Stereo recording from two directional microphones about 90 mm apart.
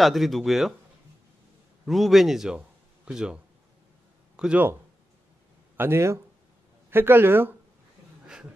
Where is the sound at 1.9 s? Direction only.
Centre (ahead or behind).